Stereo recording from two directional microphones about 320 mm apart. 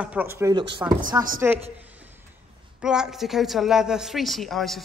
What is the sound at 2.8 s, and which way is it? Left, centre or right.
A woman's voice, centre.